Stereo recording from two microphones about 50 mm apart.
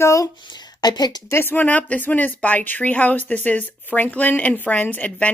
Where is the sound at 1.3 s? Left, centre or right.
Left.